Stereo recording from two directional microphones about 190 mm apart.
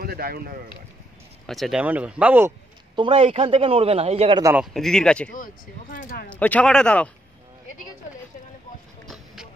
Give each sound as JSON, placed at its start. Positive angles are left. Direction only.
{"t": 0.0, "sound": "speech", "side_deg": -55}
{"t": 1.5, "sound": "speech", "side_deg": 0}
{"t": 3.0, "sound": "a man's voice", "side_deg": -30}
{"t": 4.4, "sound": "speech", "side_deg": -15}
{"t": 4.7, "sound": "speech", "side_deg": 0}
{"t": 5.3, "sound": "speech", "side_deg": 45}
{"t": 6.2, "sound": "speech", "side_deg": 5}
{"t": 9.1, "sound": "a sound", "side_deg": 0}